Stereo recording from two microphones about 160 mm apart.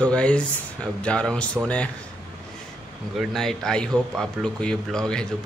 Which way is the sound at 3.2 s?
Centre (ahead or behind).